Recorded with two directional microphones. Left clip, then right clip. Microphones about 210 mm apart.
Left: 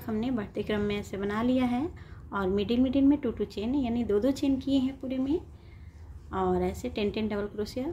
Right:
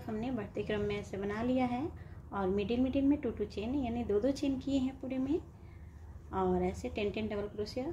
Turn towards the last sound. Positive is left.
turn(degrees=15)  # may be behind; listen again after turning